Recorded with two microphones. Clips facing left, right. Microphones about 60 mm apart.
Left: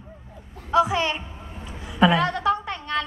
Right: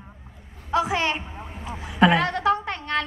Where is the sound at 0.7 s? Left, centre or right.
Right.